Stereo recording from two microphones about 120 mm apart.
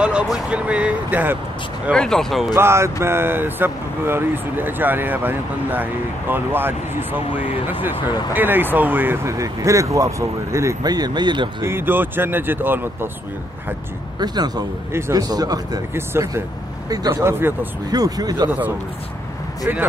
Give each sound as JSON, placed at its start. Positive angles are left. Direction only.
{"t": 0.0, "sound": "speech", "side_deg": -10}
{"t": 1.9, "sound": "speech", "side_deg": 5}
{"t": 2.5, "sound": "speech", "side_deg": -20}
{"t": 11.6, "sound": "speech", "side_deg": -20}
{"t": 14.2, "sound": "speech", "side_deg": -35}
{"t": 14.9, "sound": "speech", "side_deg": -20}
{"t": 15.1, "sound": "speech", "side_deg": -35}
{"t": 15.9, "sound": "speech", "side_deg": -20}
{"t": 17.9, "sound": "speech", "side_deg": -30}